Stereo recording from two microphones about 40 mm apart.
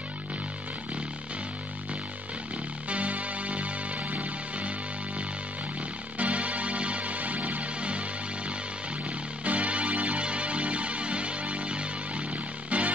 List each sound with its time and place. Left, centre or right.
2.9 s music: right
6.1 s music: right
9.4 s music: right